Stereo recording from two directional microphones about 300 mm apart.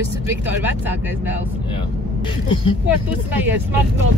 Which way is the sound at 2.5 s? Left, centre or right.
Centre.